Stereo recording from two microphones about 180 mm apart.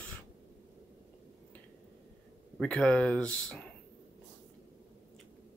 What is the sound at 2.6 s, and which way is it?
Speech, 5° left (ahead or behind).